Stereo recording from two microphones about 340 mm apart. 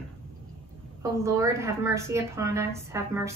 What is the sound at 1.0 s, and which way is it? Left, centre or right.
A woman's voice, centre.